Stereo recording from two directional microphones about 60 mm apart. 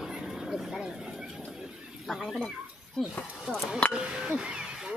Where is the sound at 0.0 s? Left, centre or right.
Centre.